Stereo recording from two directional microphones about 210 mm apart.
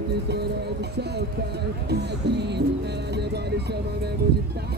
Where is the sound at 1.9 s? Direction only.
55° right (ahead or behind).